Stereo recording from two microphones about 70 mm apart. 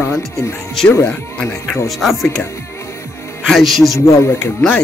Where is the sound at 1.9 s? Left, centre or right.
Centre.